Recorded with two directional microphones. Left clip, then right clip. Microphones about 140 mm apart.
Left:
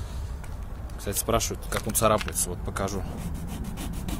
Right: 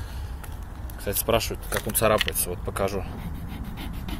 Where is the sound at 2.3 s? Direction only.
Centre (ahead or behind).